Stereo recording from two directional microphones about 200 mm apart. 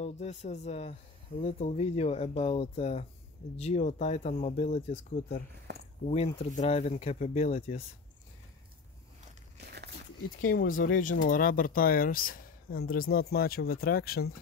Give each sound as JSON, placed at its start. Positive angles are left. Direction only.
{"t": 0.0, "sound": "speech", "side_deg": 35}
{"t": 5.7, "sound": "speech", "side_deg": -55}
{"t": 6.0, "sound": "speech", "side_deg": 35}
{"t": 9.6, "sound": "crumpling", "side_deg": -55}
{"t": 10.4, "sound": "speech", "side_deg": 45}